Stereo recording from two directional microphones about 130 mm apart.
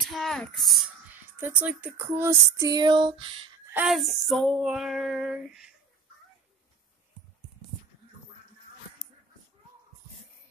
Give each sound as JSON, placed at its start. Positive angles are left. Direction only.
{"t": 0.0, "sound": "female singing", "side_deg": 0}
{"t": 1.4, "sound": "speech", "side_deg": -10}
{"t": 2.8, "sound": "a sound", "side_deg": -35}
{"t": 3.8, "sound": "female singing", "side_deg": 0}